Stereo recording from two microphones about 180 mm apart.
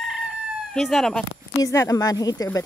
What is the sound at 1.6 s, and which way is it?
Speech, 20° left (ahead or behind).